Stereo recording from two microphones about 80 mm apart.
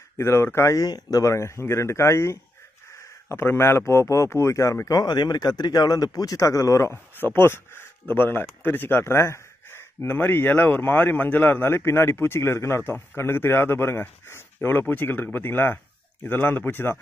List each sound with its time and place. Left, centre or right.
0.2 s speech: left
0.8 s speech: left
7.3 s speech: left